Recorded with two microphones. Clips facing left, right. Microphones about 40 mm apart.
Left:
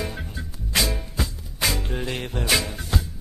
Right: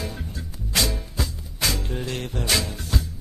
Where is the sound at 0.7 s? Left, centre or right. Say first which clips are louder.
Left 1 dB; centre.